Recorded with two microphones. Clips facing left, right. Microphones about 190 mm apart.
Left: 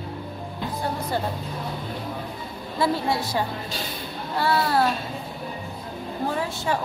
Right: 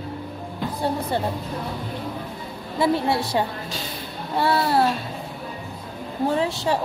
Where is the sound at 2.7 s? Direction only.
25° right (ahead or behind).